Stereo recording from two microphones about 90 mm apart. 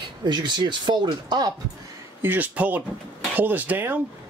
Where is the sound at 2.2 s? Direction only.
20° right (ahead or behind).